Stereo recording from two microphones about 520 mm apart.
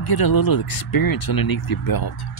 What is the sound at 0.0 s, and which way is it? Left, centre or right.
Speech, left.